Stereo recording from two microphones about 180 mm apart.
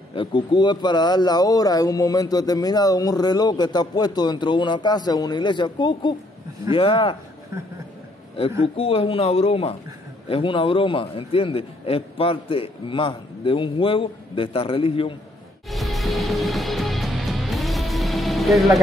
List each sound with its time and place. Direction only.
0.1 s speech: 25° left (ahead or behind)
8.4 s a man's voice: 30° left (ahead or behind)
15.7 s music: centre (ahead or behind)